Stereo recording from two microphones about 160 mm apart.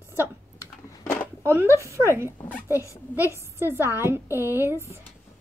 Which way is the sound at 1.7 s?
20° right (ahead or behind).